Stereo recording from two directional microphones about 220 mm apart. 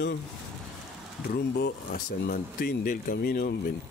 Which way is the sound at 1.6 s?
45° left (ahead or behind).